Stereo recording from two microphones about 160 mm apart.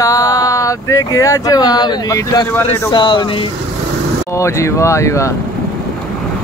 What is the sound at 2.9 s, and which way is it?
Speech, 30° left (ahead or behind).